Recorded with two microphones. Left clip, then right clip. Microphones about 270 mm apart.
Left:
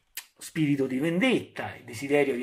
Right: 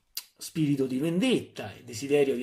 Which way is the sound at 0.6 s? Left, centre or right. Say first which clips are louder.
Left 1 dB; left.